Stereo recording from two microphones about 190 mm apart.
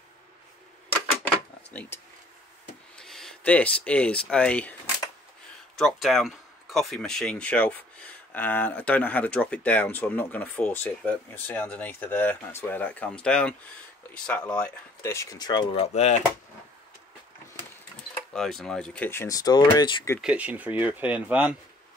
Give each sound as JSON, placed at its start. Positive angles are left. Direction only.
{"t": 1.7, "sound": "speech", "side_deg": 10}
{"t": 3.0, "sound": "speech", "side_deg": 0}
{"t": 18.3, "sound": "speech", "side_deg": 0}
{"t": 20.2, "sound": "speech", "side_deg": -5}